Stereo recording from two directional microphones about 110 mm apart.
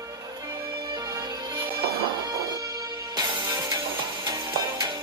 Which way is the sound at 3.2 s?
35° right (ahead or behind).